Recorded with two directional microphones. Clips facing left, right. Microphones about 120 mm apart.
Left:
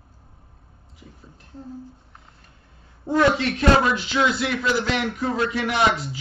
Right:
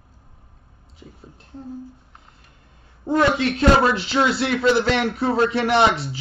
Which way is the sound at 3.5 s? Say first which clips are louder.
Right 2 dB; 35° right (ahead or behind).